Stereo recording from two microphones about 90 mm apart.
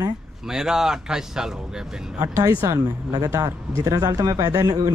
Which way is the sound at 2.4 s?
40° right (ahead or behind).